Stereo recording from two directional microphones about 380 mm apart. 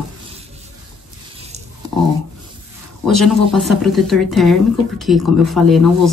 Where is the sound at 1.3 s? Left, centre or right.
Centre.